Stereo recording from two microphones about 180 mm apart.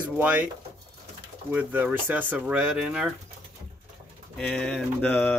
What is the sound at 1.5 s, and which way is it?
Speech, 10° right (ahead or behind).